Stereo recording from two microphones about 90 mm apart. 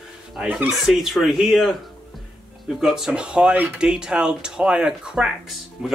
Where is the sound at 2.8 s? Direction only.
5° right (ahead or behind).